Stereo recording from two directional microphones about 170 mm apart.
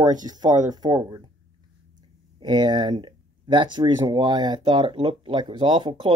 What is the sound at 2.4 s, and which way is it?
Speech, 25° right (ahead or behind).